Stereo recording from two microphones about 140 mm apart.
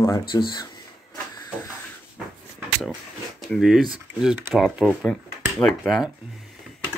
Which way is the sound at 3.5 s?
Centre (ahead or behind).